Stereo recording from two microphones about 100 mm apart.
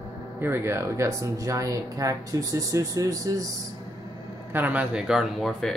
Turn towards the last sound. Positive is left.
turn(degrees=5)  # may be behind; listen again after turning